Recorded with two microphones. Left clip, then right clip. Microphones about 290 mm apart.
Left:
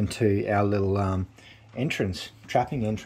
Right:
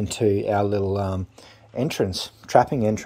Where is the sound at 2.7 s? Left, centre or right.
Right.